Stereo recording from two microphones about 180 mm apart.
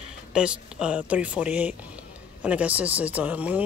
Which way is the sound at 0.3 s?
5° right (ahead or behind).